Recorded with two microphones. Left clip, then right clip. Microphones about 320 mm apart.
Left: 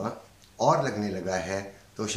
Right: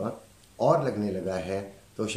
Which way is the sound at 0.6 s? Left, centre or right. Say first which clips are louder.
Even; centre.